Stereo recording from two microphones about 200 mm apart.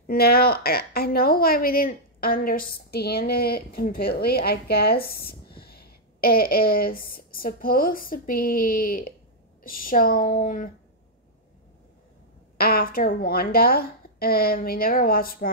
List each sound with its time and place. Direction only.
0.0 s a woman's voice: 50° left (ahead or behind)
12.5 s a woman's voice: 50° left (ahead or behind)